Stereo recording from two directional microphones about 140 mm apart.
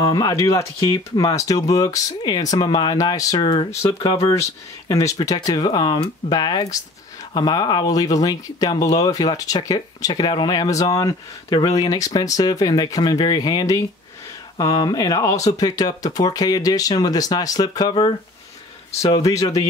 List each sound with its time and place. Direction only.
0.0 s speech: 25° left (ahead or behind)
3.3 s speech: 40° left (ahead or behind)
4.2 s speech: 25° left (ahead or behind)